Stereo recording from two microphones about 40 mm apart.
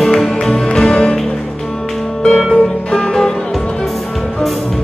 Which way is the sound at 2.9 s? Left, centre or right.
Centre.